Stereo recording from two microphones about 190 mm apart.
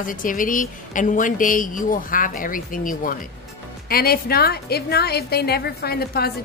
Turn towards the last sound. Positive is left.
turn(degrees=55)  # may be behind; listen again after turning